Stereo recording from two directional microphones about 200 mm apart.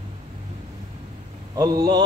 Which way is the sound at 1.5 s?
20° right (ahead or behind).